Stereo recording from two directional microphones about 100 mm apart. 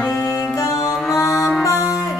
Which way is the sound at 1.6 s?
30° left (ahead or behind).